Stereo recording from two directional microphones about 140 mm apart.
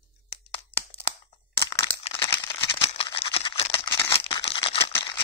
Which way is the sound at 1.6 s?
20° left (ahead or behind).